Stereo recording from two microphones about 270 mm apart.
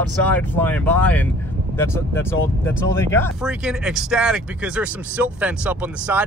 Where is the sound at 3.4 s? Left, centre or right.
Centre.